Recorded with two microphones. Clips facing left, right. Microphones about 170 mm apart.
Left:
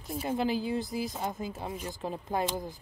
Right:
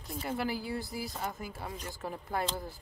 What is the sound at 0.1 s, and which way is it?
Speech, 20° left (ahead or behind).